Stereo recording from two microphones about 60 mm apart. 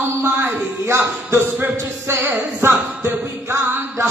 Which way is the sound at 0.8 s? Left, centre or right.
Right.